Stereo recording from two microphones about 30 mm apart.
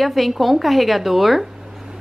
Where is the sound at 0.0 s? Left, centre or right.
Centre.